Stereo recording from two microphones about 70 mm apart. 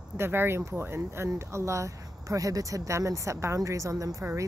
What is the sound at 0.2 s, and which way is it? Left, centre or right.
Speech, right.